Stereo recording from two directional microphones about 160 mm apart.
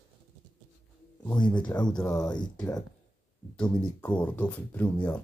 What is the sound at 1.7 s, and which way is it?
Speech, 25° left (ahead or behind).